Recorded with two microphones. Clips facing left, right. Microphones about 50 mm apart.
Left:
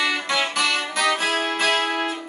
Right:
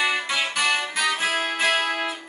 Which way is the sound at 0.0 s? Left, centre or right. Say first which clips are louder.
Left 1 dB; centre.